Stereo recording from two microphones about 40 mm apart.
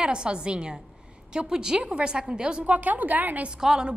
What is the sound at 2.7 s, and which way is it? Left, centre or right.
Speech, right.